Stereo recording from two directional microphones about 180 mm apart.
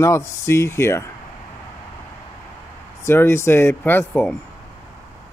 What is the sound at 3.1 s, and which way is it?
Speech, 15° left (ahead or behind).